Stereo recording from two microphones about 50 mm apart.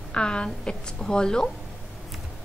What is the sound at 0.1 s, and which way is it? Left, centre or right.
A woman's voice, centre.